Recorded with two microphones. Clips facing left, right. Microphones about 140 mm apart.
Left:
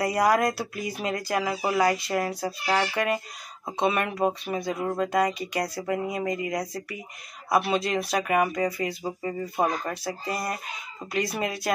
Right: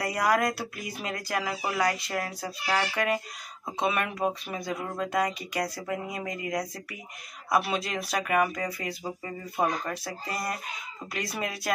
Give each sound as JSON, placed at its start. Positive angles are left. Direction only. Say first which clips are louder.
{"t": 0.0, "sound": "speech", "louder": "left 4 dB", "side_deg": 0}
{"t": 2.4, "sound": "speech", "louder": "left 3 dB", "side_deg": 25}
{"t": 2.8, "sound": "speech", "louder": "left 2 dB", "side_deg": 0}